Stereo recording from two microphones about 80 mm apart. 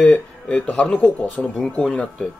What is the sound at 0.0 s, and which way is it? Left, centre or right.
Speech, centre.